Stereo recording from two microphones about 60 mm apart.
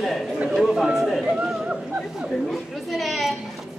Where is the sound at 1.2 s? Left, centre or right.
Centre.